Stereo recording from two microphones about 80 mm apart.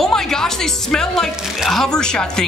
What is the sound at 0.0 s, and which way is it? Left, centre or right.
Speech, centre.